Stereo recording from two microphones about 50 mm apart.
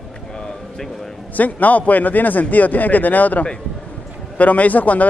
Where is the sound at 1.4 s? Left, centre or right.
Left.